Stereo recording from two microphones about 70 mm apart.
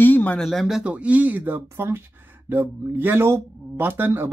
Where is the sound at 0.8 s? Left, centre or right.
Centre.